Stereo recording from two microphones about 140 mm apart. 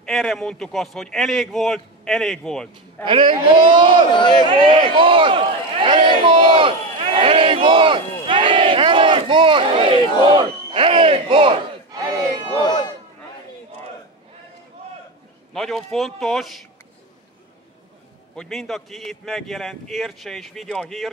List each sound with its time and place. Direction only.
0.0 s a man's voice: 5° left (ahead or behind)
3.1 s a man's voice: 35° right (ahead or behind)
4.1 s speech: 35° left (ahead or behind)
4.5 s a man's voice: 35° right (ahead or behind)
7.2 s battle cry: 40° right (ahead or behind)
12.6 s a sound: 30° left (ahead or behind)
15.5 s a man's voice: 5° left (ahead or behind)
18.3 s a man's voice: 5° left (ahead or behind)